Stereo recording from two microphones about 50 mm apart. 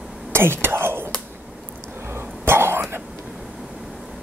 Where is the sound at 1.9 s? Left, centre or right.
Right.